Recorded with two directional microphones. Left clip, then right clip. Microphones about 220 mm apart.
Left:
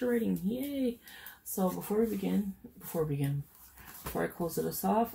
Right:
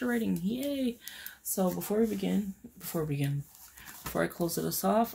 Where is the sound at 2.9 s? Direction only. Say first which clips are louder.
Left 1 dB; 55° right (ahead or behind).